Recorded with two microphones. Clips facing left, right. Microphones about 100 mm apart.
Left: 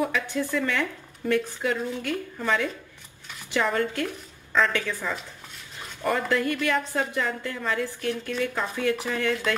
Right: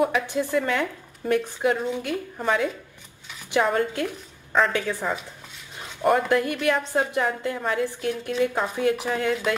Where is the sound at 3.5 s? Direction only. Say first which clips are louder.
Right 3 dB; 20° right (ahead or behind).